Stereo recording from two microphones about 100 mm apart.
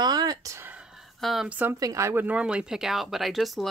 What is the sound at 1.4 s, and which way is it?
Speech, 15° right (ahead or behind).